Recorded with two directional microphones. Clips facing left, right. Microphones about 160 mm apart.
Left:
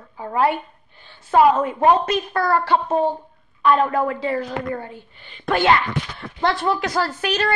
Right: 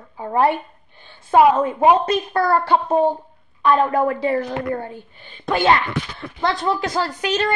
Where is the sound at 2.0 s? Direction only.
25° right (ahead or behind).